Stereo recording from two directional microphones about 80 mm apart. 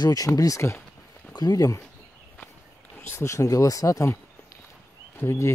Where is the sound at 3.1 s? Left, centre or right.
Left.